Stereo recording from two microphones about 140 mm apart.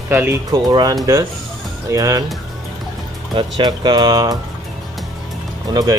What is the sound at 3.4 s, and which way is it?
Speech, 35° right (ahead or behind).